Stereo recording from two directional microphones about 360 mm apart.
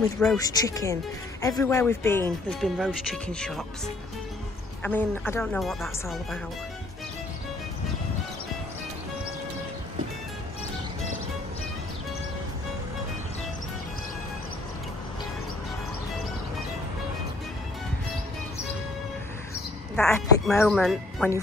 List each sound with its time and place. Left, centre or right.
0.2 s speech: centre
20.0 s speech: centre